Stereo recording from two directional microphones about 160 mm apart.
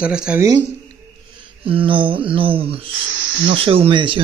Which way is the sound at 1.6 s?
35° right (ahead or behind).